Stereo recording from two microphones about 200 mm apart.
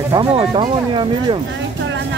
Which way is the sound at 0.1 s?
25° right (ahead or behind).